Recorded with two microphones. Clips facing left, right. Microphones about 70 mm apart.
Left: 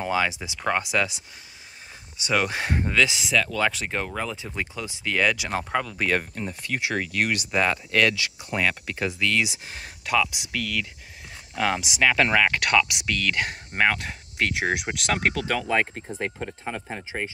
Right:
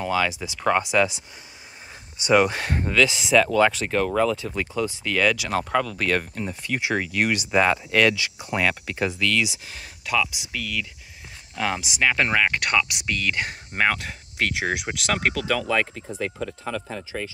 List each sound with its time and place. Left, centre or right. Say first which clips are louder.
0.0 s speech: right 1 dB; centre
0.6 s speech: right 4 dB; centre
2.2 s speech: right 7 dB; right
2.5 s speech: right 1 dB; centre
3.3 s speech: right 6 dB; centre
6.4 s speech: right 2 dB; centre
9.4 s speech: right 1 dB; left
13.7 s speech: even; left
16.4 s speech: right 2 dB; left